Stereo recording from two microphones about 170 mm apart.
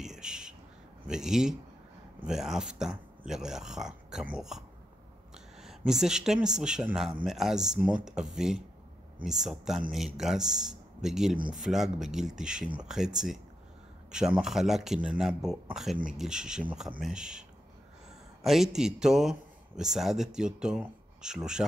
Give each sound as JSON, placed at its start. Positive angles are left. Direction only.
{"t": 0.0, "sound": "a sound", "side_deg": -5}
{"t": 1.0, "sound": "speech", "side_deg": -5}
{"t": 21.6, "sound": "speech", "side_deg": -15}